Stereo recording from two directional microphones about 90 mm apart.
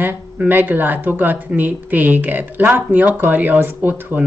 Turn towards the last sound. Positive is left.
turn(degrees=-20)  # may be behind; listen again after turning